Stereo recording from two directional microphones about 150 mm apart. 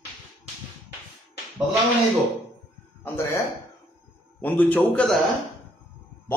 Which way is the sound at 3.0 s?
15° left (ahead or behind).